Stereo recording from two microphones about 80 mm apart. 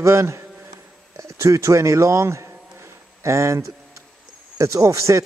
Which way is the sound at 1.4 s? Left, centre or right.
Right.